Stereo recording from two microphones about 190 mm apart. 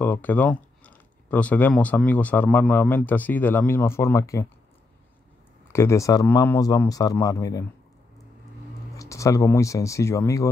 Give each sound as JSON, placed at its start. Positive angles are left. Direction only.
{"t": 0.0, "sound": "speech", "side_deg": 10}
{"t": 5.7, "sound": "speech", "side_deg": 15}
{"t": 8.9, "sound": "speech", "side_deg": 15}